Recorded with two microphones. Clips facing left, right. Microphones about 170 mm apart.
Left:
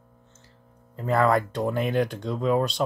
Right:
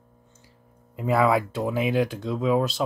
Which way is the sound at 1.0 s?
5° right (ahead or behind).